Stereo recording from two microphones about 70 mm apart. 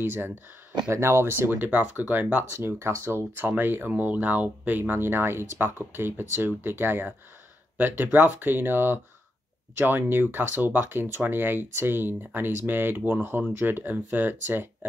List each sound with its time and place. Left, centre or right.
0.0 s speech: right
0.8 s speech: right